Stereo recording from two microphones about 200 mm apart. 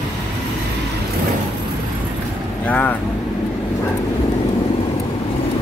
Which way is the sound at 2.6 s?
5° left (ahead or behind).